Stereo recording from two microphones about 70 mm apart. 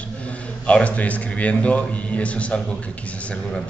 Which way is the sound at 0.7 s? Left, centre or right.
Centre.